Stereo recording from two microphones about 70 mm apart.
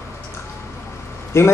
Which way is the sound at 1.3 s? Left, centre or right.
Left.